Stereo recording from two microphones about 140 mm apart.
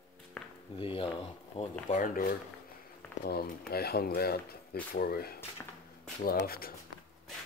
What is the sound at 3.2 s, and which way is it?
Speech, 90° left.